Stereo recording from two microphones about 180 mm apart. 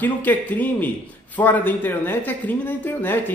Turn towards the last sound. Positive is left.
turn(degrees=10)  # may be behind; listen again after turning